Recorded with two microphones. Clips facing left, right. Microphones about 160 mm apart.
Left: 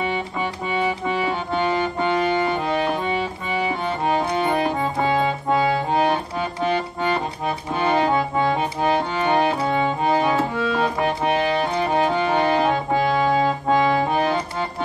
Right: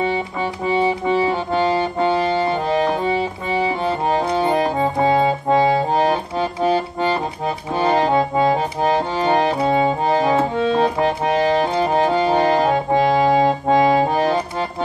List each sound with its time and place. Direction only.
0.7 s accordion: 30° right (ahead or behind)